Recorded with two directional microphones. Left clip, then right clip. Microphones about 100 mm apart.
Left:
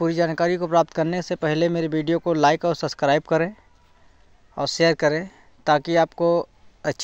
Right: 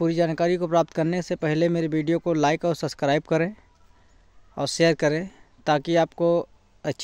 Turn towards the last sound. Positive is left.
turn(degrees=-45)  # may be behind; listen again after turning